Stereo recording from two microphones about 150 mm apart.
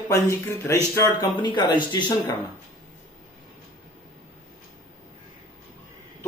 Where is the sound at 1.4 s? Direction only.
30° left (ahead or behind).